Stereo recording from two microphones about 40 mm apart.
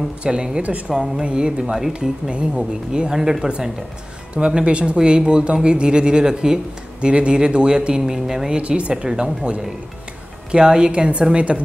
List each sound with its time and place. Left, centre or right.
0.2 s speech: right
0.6 s a woman's voice: right
0.8 s speech: right
4.5 s speech: right
8.9 s a woman's voice: centre